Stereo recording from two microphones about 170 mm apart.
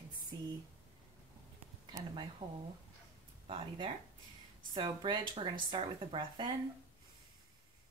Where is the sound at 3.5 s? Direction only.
35° right (ahead or behind).